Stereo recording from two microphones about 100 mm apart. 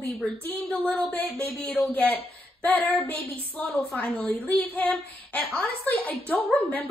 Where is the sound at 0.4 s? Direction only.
20° left (ahead or behind).